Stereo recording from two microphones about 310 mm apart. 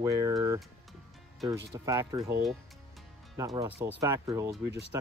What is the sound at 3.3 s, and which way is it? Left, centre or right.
Speech, centre.